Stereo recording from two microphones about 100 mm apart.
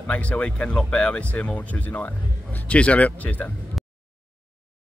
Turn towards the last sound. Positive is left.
turn(degrees=15)  # may be behind; listen again after turning